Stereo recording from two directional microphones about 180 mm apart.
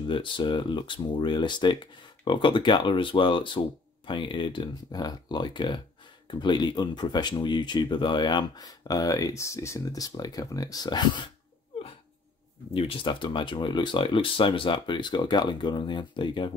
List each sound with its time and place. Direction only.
0.0 s speech: 25° left (ahead or behind)
12.7 s speech: 30° left (ahead or behind)